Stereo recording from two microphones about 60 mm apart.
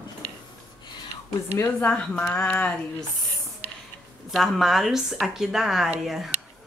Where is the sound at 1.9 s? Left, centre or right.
Left.